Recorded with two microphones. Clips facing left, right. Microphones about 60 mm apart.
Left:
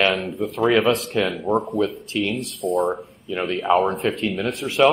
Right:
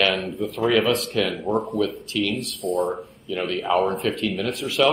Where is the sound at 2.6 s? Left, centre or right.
Centre.